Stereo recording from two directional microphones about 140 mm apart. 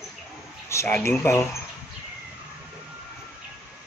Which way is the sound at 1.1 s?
20° left (ahead or behind).